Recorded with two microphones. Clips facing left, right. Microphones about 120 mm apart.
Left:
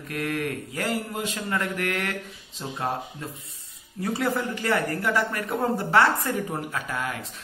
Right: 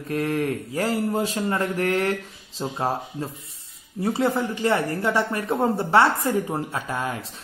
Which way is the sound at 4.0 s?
25° right (ahead or behind).